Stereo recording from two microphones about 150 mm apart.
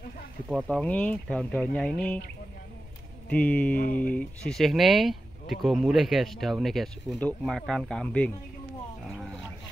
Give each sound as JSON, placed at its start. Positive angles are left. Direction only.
{"t": 0.7, "sound": "speech", "side_deg": 10}
{"t": 3.3, "sound": "speech", "side_deg": 10}
{"t": 3.7, "sound": "speech", "side_deg": 70}
{"t": 4.1, "sound": "speech", "side_deg": 10}
{"t": 9.1, "sound": "vehicle", "side_deg": 0}